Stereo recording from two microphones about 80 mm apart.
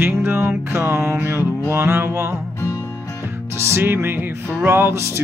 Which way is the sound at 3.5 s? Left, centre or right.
Right.